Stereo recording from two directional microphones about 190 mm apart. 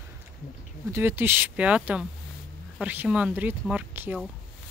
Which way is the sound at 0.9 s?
10° right (ahead or behind).